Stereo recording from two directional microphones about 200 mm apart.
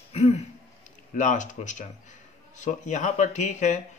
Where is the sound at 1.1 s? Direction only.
40° left (ahead or behind).